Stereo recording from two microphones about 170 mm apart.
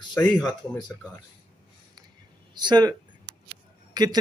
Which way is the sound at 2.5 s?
25° right (ahead or behind).